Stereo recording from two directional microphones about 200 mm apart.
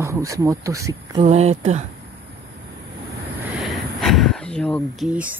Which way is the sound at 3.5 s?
Centre (ahead or behind).